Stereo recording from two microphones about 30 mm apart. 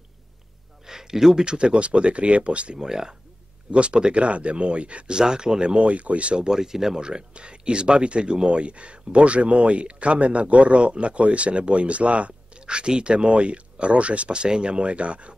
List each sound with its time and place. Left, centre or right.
0.8 s a sound: centre
1.4 s speech: right
2.8 s speech: centre
3.7 s speech: right
5.1 s speech: right
5.8 s speech: right
6.3 s speech: right
7.0 s speech: right
12.6 s speech: right